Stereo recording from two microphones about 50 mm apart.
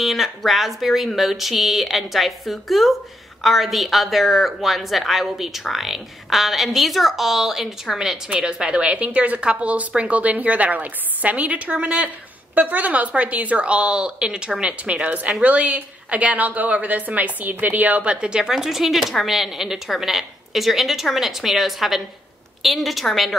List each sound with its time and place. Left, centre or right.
0.0 s a woman's voice: centre
8.4 s a woman's voice: centre
18.5 s a woman's voice: centre